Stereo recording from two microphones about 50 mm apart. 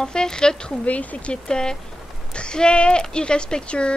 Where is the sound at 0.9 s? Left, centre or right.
Left.